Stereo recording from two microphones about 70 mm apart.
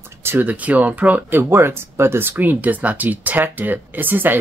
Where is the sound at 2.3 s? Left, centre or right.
Right.